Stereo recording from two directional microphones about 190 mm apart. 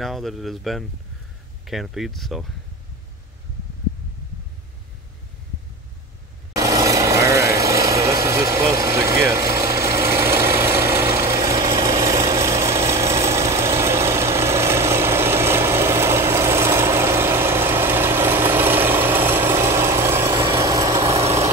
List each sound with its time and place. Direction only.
0.0 s speech: centre (ahead or behind)
6.5 s vehicle: 15° right (ahead or behind)
21.2 s vehicle: 35° right (ahead or behind)